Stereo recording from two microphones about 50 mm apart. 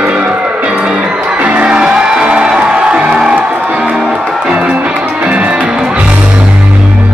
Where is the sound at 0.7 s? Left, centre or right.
Right.